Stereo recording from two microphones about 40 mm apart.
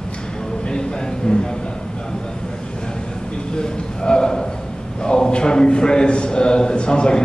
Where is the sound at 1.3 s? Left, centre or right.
Left.